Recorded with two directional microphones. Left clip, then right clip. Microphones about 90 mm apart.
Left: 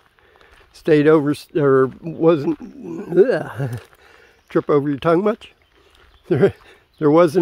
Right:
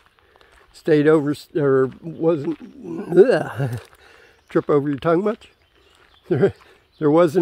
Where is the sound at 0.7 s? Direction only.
25° left (ahead or behind).